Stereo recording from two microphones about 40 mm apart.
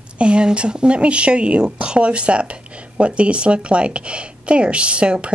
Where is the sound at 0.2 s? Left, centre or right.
Right.